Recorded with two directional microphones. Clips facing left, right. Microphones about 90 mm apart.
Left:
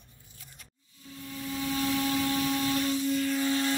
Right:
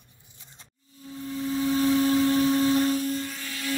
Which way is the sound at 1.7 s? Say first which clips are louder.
Right 7 dB; 35° right (ahead or behind).